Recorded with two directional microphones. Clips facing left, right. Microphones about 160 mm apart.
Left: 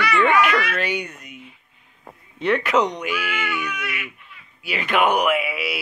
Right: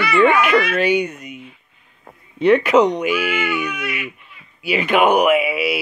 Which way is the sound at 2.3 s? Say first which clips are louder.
Right 7 dB; 15° right (ahead or behind).